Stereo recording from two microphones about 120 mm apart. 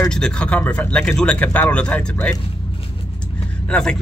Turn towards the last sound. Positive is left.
turn(degrees=5)  # may be behind; listen again after turning